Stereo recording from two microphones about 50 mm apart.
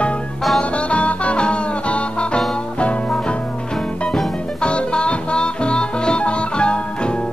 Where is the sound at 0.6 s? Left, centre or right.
Left.